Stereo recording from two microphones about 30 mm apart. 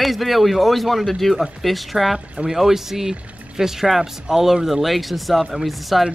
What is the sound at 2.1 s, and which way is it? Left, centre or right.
Speech, right.